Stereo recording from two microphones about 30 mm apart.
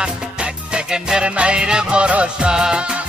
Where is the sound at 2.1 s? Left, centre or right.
Right.